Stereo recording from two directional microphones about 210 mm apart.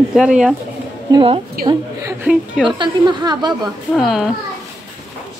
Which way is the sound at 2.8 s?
20° right (ahead or behind).